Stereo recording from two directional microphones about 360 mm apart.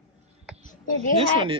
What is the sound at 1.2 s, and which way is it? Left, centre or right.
Speech, centre.